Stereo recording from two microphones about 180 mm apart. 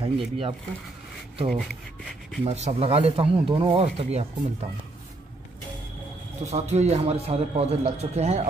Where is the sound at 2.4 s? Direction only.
35° right (ahead or behind).